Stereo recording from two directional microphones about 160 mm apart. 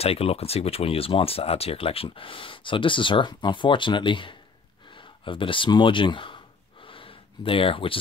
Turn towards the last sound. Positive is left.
turn(degrees=35)  # may be behind; listen again after turning